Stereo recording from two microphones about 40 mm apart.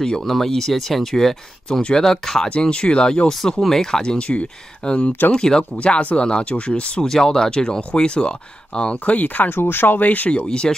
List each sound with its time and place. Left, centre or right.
0.1 s speech: centre
1.7 s speech: left
2.5 s speech: left
3.3 s speech: centre
4.2 s speech: left
7.0 s speech: centre; by 9.6 s left
9.6 s speech: left
10.3 s speech: left